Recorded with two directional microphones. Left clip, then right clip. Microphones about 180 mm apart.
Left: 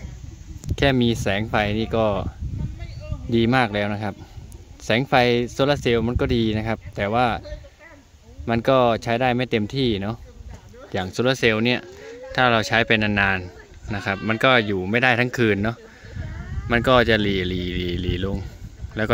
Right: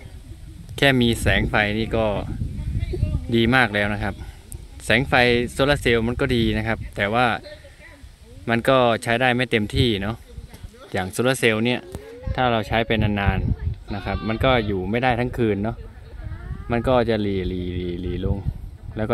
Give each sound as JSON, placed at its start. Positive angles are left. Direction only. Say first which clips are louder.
{"t": 0.7, "sound": "speech", "louder": "right 2 dB", "side_deg": 0}
{"t": 3.3, "sound": "speech", "louder": "right 1 dB", "side_deg": 5}
{"t": 8.5, "sound": "speech", "louder": "even", "side_deg": 5}